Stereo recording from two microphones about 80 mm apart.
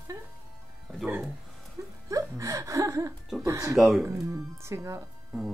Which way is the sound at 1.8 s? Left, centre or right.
Right.